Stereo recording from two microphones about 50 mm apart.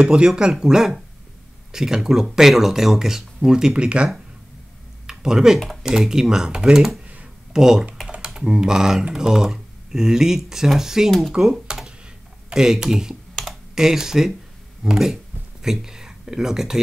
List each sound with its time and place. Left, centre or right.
0.0 s speech: centre
5.0 s a sound: centre
5.8 s speech: centre
11.6 s computer keyboard: centre
12.4 s speech: centre
13.4 s computer keyboard: centre
14.8 s speech: centre